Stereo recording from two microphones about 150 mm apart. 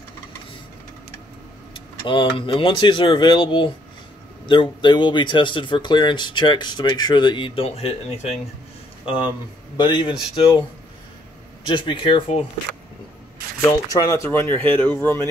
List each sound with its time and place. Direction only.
1.7 s speech: 35° left (ahead or behind)
9.0 s speech: 35° left (ahead or behind)
11.6 s speech: 35° left (ahead or behind)
13.9 s speech: 20° left (ahead or behind)